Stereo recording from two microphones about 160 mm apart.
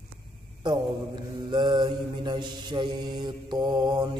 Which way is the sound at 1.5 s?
30° right (ahead or behind).